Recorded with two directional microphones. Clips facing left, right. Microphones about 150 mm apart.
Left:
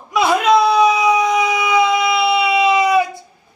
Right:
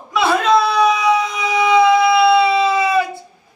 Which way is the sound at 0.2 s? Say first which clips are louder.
Left 1 dB; 15° left (ahead or behind).